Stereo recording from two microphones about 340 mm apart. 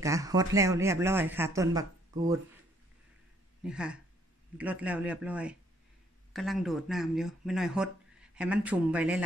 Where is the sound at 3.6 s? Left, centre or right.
Centre.